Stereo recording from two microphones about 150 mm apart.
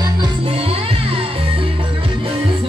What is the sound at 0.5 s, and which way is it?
Music, 40° right (ahead or behind).